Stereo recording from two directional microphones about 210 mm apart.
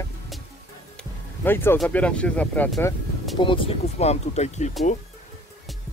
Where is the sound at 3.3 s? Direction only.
25° left (ahead or behind).